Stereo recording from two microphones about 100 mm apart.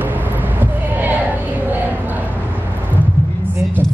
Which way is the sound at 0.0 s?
20° right (ahead or behind).